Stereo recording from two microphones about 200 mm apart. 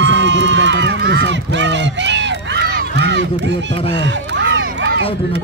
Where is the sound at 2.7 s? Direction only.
60° right (ahead or behind).